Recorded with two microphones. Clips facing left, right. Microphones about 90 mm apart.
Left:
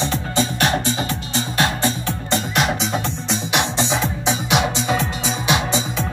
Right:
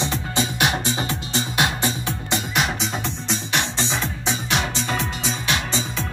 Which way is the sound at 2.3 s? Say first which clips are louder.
Left 4 dB; centre (ahead or behind).